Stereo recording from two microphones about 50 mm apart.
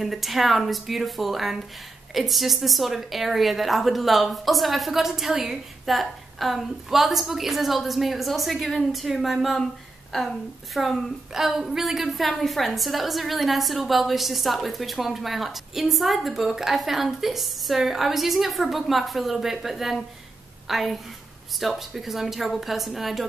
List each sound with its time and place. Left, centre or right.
0.0 s a woman's voice: centre